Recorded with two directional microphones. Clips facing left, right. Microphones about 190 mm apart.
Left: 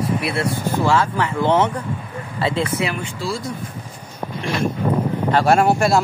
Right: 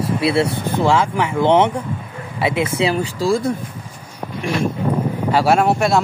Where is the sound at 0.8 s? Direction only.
15° right (ahead or behind); by 3.5 s 50° right (ahead or behind).